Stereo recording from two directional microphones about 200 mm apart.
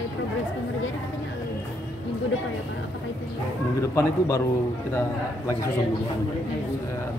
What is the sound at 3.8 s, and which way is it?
Speech, 15° left (ahead or behind).